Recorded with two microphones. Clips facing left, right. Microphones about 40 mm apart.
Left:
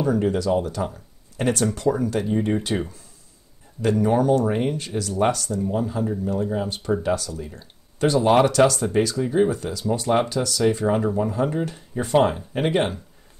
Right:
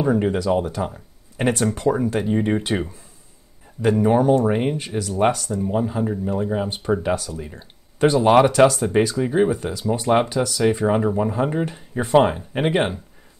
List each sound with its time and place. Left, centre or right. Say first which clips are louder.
0.0 s speech: right 2 dB; right